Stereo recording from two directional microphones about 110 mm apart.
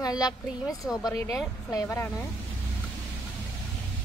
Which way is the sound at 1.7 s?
25° left (ahead or behind).